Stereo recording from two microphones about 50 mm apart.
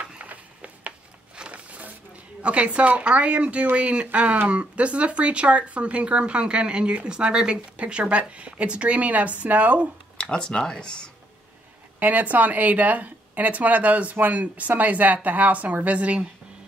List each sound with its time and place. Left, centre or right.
0.0 s a sound: right
2.4 s speech: right
10.3 s speech: centre
12.0 s speech: right